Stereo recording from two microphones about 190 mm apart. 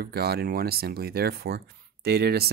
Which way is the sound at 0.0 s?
55° right (ahead or behind).